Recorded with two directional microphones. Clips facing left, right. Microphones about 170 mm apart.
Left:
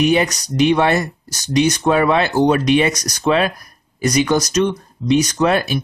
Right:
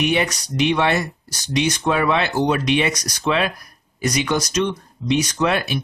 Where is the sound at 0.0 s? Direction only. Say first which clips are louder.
Left 5 dB; 40° left (ahead or behind).